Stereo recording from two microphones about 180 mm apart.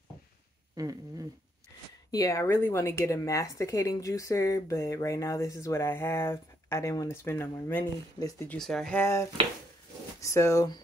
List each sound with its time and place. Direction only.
0.7 s a sound: 20° right (ahead or behind)
2.0 s a woman's voice: 20° left (ahead or behind)
8.5 s a woman's voice: centre (ahead or behind)